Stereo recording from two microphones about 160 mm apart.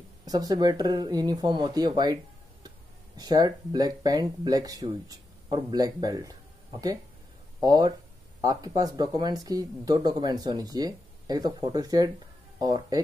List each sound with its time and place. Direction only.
0.2 s speech: 25° right (ahead or behind)
3.2 s speech: 25° right (ahead or behind)
7.6 s speech: 25° right (ahead or behind)